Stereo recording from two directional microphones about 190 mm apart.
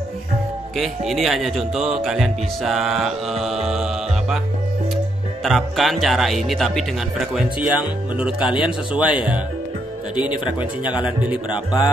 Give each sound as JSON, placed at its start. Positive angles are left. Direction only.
{"t": 0.7, "sound": "speech", "side_deg": 0}
{"t": 5.4, "sound": "speech", "side_deg": 0}
{"t": 8.4, "sound": "speech", "side_deg": 25}
{"t": 9.1, "sound": "speech", "side_deg": -5}
{"t": 11.5, "sound": "speech", "side_deg": 20}